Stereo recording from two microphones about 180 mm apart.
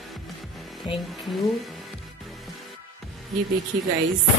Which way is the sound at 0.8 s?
25° left (ahead or behind).